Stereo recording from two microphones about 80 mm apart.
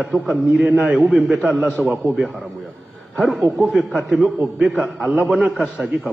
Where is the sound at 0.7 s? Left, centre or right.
Centre.